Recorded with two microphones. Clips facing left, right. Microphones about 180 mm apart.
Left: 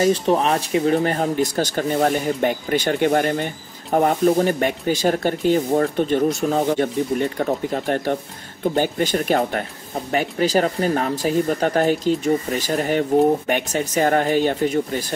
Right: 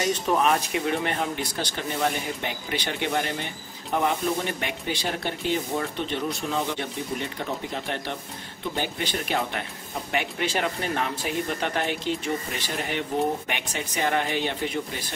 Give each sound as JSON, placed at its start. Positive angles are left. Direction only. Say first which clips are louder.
{"t": 0.0, "sound": "speech", "louder": "left 6 dB", "side_deg": 30}